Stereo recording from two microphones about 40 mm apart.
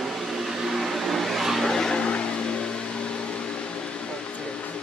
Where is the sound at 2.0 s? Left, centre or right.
Left.